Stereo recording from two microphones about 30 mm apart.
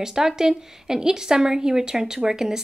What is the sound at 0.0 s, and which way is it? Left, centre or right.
Speech, centre.